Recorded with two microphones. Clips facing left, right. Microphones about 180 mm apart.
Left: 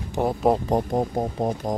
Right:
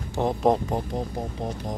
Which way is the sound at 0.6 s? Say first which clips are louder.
Left 6 dB; 45° left (ahead or behind).